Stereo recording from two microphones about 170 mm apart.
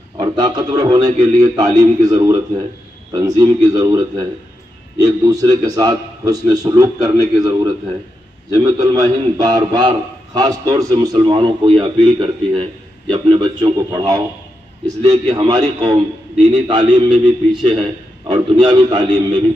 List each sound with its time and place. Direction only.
0.2 s a man's voice: 25° right (ahead or behind)